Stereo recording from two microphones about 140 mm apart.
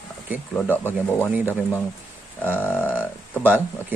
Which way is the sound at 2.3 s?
15° left (ahead or behind).